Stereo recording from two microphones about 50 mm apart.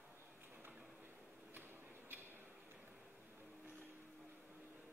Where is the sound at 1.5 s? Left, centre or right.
Right.